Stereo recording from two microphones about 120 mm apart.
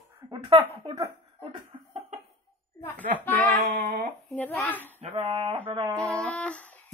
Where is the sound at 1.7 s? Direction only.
60° right (ahead or behind).